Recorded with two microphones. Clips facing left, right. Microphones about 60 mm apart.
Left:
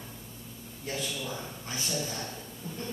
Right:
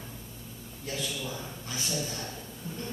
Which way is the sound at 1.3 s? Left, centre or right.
Left.